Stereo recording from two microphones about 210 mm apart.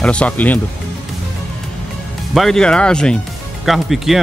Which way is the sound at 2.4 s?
Centre (ahead or behind).